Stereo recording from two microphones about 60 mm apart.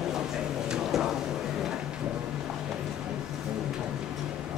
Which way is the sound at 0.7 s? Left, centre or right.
Centre.